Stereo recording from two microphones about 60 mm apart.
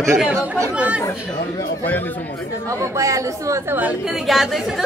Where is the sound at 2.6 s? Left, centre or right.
Right.